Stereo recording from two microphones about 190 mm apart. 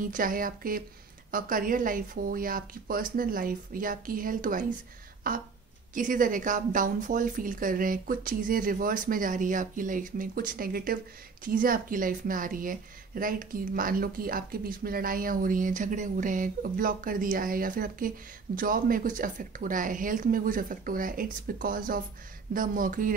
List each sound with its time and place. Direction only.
0.0 s a woman's voice: 45° right (ahead or behind)